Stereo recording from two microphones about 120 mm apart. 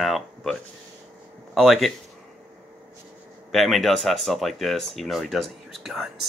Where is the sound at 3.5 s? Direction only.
Centre (ahead or behind).